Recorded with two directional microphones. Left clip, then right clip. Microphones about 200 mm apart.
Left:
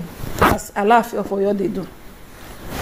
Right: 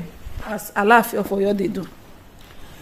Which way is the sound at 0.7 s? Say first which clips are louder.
Even; 15° right (ahead or behind).